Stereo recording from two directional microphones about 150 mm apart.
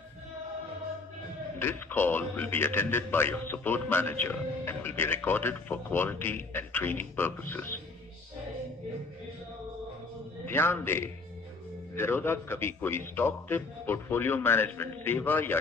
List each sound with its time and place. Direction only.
1.6 s a man's voice: 15° left (ahead or behind)
10.4 s a man's voice: 15° left (ahead or behind)